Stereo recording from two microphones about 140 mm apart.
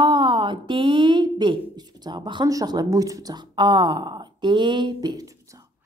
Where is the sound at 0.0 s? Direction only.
35° right (ahead or behind).